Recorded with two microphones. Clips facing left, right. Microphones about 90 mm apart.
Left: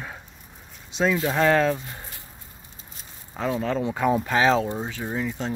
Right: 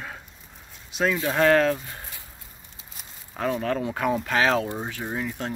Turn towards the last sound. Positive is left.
turn(degrees=0)  # may be behind; listen again after turning